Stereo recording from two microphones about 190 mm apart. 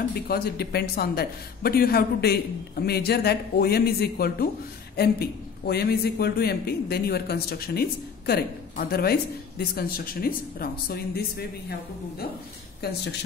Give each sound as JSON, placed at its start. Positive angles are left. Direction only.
{"t": 0.1, "sound": "a man's voice", "side_deg": 55}
{"t": 12.8, "sound": "a man's voice", "side_deg": 55}